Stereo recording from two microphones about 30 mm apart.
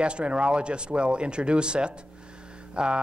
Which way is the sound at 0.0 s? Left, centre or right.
Right.